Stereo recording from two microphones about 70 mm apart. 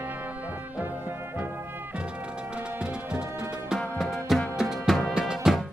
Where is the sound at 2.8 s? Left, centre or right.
Centre.